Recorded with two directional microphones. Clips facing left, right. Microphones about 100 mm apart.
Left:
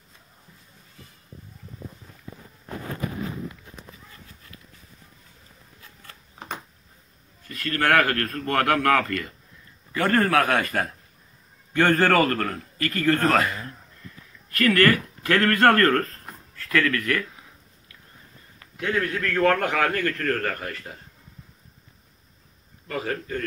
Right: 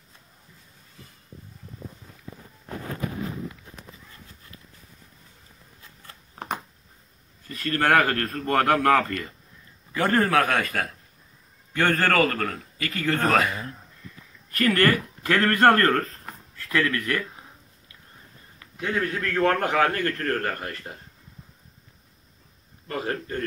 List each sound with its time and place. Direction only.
7.4 s a man's voice: 25° right (ahead or behind)
10.4 s a man's voice: 10° left (ahead or behind); by 13.6 s 10° right (ahead or behind)
14.6 s a man's voice: 20° right (ahead or behind)
18.8 s a man's voice: 20° right (ahead or behind)
22.8 s speech: 10° right (ahead or behind)